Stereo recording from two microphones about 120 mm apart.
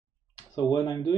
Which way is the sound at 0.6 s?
35° left (ahead or behind).